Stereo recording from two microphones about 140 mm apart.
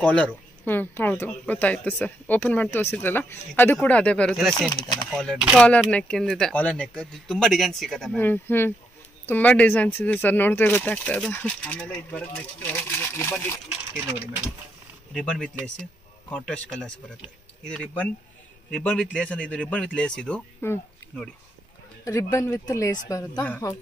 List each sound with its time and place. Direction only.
0.0 s speech: 10° left (ahead or behind)
8.2 s speech: 15° left (ahead or behind)
15.1 s speech: 5° left (ahead or behind)
22.0 s speech: 20° left (ahead or behind)